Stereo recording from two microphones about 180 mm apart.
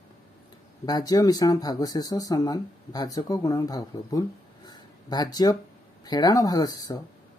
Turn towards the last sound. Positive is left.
turn(degrees=20)  # may be behind; listen again after turning